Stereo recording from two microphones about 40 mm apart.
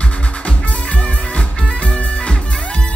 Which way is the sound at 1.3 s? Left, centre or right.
Left.